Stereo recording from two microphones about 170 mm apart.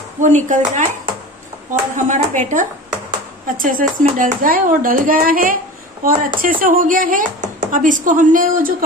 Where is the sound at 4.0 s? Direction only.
55° right (ahead or behind).